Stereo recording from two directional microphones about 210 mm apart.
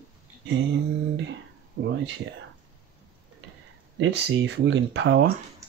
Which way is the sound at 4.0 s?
60° right (ahead or behind).